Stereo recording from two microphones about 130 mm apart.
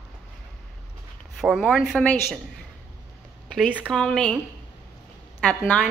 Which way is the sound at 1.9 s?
10° left (ahead or behind).